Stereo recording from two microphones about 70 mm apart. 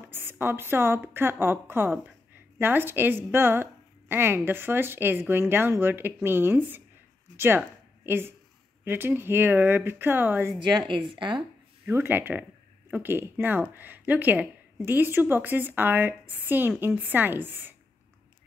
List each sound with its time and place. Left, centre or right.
0.1 s a woman's voice: right
11.8 s speech: right